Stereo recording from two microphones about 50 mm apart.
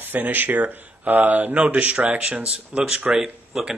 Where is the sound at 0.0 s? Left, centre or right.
Right.